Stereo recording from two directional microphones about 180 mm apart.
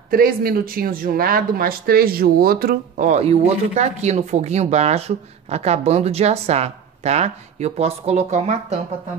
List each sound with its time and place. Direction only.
0.1 s speech: 55° right (ahead or behind)
3.1 s speech: 35° right (ahead or behind)